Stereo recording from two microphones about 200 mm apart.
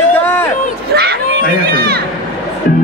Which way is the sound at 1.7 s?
55° right (ahead or behind).